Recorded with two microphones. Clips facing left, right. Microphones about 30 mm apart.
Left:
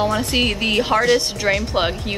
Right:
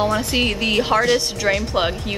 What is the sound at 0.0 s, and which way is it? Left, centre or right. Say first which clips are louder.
Speech: even; centre.